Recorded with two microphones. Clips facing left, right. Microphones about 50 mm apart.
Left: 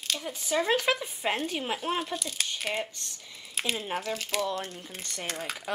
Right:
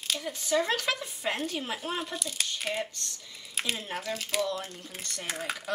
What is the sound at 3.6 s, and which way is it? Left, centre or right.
Speech, centre.